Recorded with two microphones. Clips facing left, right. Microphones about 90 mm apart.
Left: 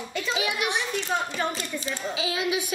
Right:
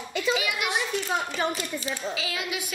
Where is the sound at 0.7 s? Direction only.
10° right (ahead or behind).